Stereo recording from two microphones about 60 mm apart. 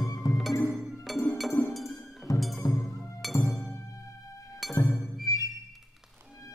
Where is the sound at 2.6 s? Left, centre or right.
Left.